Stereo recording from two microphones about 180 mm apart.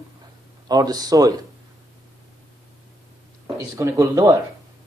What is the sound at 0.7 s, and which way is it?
Speech, 20° right (ahead or behind).